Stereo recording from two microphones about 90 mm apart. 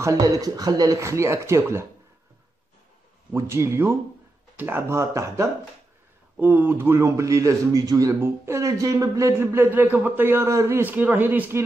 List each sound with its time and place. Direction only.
0.0 s speech: 40° right (ahead or behind)
0.9 s a man's voice: 35° right (ahead or behind)
3.3 s a man's voice: 35° right (ahead or behind)
8.2 s speech: 35° right (ahead or behind)